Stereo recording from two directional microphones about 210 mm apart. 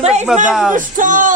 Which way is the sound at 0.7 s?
40° right (ahead or behind).